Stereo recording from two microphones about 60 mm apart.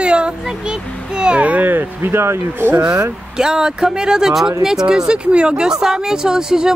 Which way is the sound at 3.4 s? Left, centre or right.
Centre.